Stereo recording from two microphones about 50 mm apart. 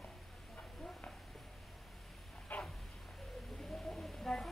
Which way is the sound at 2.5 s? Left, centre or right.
Left.